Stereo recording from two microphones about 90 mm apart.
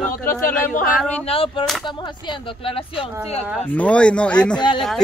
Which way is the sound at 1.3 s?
90° left.